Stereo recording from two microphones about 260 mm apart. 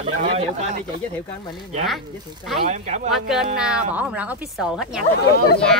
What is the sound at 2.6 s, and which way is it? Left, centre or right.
Speech, right.